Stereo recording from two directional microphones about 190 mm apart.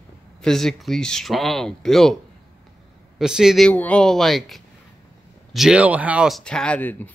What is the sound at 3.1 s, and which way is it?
Speech, 5° right (ahead or behind).